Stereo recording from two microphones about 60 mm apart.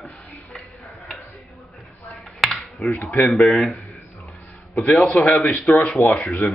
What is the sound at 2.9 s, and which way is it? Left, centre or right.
Speech, left.